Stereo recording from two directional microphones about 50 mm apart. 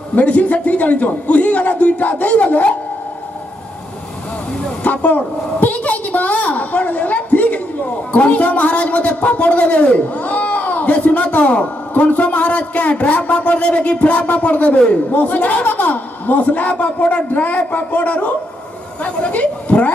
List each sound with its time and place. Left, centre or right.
0.1 s a man's voice: left
4.8 s a sound: left
8.3 s a man's voice: left
19.3 s speech: left